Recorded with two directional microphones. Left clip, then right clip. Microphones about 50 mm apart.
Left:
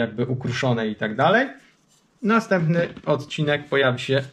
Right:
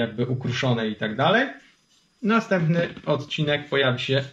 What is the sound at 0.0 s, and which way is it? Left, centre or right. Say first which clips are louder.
Speech: left 1 dB; left.